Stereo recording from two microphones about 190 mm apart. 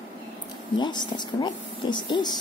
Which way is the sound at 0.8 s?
25° left (ahead or behind).